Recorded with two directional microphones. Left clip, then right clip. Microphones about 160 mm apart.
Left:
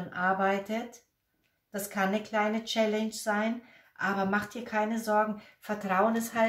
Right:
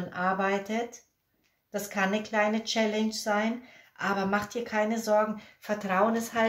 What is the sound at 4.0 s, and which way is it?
Speech, 45° right (ahead or behind).